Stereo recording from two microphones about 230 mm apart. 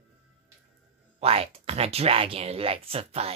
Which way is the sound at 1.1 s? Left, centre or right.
Right.